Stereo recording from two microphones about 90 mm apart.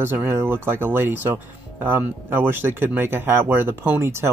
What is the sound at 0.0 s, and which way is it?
Speech, 25° right (ahead or behind).